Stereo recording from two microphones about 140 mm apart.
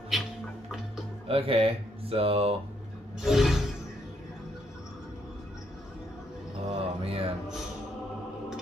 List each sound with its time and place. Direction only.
0.1 s music: 5° right (ahead or behind)
1.2 s speech: 40° right (ahead or behind)
3.2 s a sound: 5° right (ahead or behind)
6.7 s mantra: 45° right (ahead or behind)